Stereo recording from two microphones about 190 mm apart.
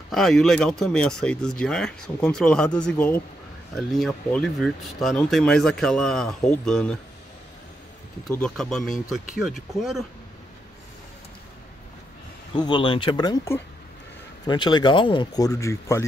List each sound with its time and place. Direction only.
0.1 s speech: centre (ahead or behind)
8.3 s speech: 5° left (ahead or behind)
12.5 s speech: 25° left (ahead or behind)